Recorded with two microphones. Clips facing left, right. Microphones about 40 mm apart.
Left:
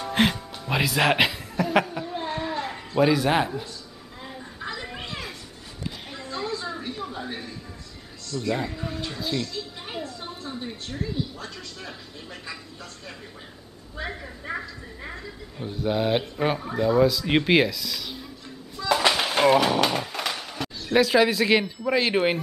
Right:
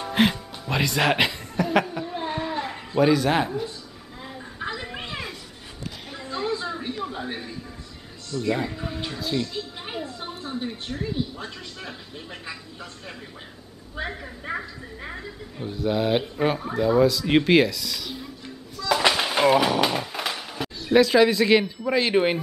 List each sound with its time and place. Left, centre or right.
0.1 s music: centre
3.0 s speech: centre
4.6 s children playing: centre
6.2 s a sound: centre
7.1 s television: centre
8.4 s a woman's voice: centre
9.5 s music: centre
10.0 s a woman's voice: centre
14.0 s a woman's voice: centre
15.6 s speech: centre
18.9 s a sound: centre